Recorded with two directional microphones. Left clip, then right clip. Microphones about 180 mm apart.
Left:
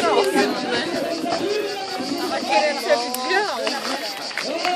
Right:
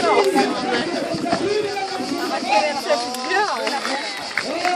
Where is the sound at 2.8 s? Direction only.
45° left (ahead or behind).